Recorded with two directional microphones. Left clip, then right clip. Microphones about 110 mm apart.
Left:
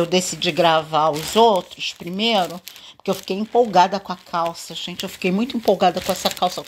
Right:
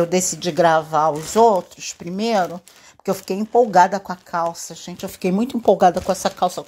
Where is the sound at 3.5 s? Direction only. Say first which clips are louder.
Right 2 dB; 20° right (ahead or behind).